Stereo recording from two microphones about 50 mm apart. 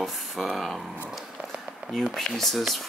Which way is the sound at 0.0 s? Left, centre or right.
Centre.